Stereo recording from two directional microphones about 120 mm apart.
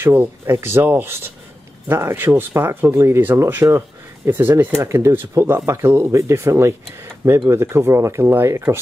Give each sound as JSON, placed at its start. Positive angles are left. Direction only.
{"t": 0.0, "sound": "speech", "side_deg": -15}